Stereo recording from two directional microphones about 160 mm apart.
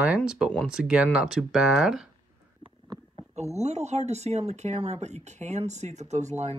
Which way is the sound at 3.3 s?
45° right (ahead or behind).